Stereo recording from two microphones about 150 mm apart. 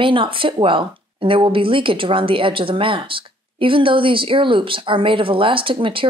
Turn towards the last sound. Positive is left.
turn(degrees=-35)  # may be behind; listen again after turning